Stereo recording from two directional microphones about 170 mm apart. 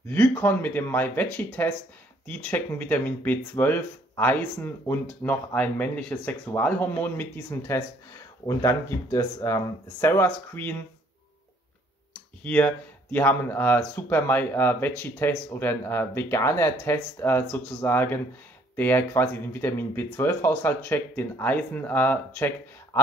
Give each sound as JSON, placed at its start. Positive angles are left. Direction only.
{"t": 0.1, "sound": "speech", "side_deg": 10}
{"t": 12.1, "sound": "speech", "side_deg": 10}